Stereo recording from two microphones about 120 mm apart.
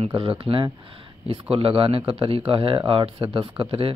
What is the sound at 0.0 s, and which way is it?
Speech, 50° right (ahead or behind).